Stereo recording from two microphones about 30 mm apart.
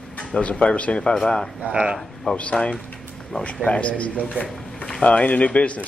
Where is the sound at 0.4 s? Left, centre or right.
Left.